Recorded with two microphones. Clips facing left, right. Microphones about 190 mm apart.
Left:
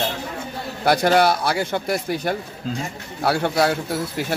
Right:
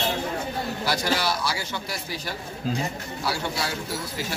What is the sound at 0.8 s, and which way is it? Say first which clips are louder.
A man's voice: left 11 dB; 55° left (ahead or behind).